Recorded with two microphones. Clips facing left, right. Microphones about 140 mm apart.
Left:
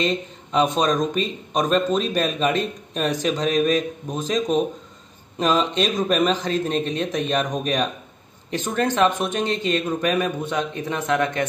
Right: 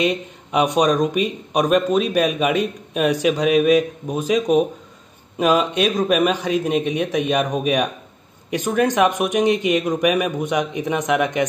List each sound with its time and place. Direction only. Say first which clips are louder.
0.0 s speech: right 3 dB; 10° right (ahead or behind)